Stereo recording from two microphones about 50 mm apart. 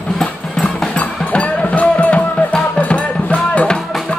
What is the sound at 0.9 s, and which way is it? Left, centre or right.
Music, left.